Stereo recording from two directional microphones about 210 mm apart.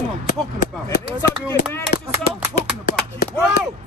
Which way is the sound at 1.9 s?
35° left (ahead or behind).